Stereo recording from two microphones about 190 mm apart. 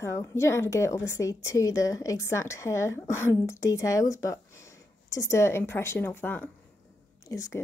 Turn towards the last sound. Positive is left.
turn(degrees=15)  # may be behind; listen again after turning